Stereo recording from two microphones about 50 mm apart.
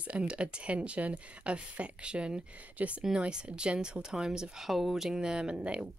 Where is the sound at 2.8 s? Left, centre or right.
Right.